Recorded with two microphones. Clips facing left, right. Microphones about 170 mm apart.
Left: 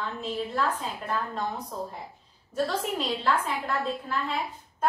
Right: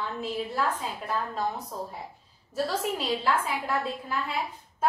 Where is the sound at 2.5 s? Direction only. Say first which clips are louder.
Even; 5° right (ahead or behind).